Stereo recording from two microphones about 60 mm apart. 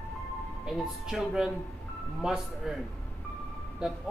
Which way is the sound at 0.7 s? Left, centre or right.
Centre.